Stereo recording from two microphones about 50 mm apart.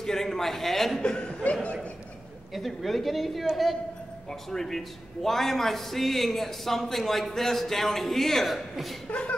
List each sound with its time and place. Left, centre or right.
0.0 s a man's voice: centre
1.0 s speech: centre
2.5 s a man's voice: centre